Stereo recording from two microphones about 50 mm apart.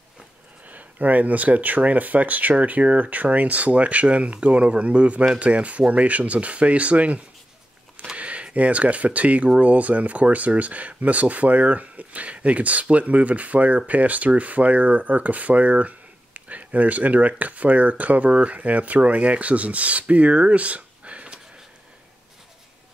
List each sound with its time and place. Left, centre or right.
0.7 s speech: right